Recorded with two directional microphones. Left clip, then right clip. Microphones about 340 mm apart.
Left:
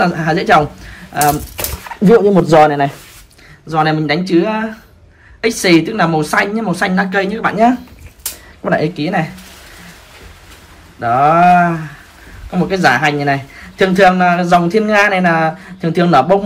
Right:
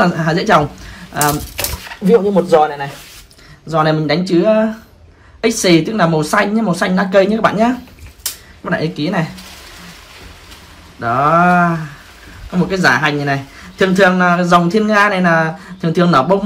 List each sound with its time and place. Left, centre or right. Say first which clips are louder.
0.0 s a man's voice: even; centre
2.4 s speech: left 3 dB; centre
3.6 s a man's voice: even; centre
11.0 s a man's voice: left 2 dB; centre